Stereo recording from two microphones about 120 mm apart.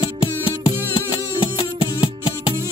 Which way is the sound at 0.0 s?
40° left (ahead or behind).